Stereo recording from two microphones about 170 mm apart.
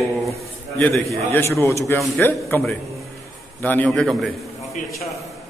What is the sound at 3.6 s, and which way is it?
Speech, 10° left (ahead or behind).